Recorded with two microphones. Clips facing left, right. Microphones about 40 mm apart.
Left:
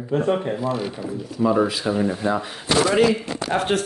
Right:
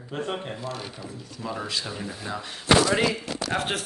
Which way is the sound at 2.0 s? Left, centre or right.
Left.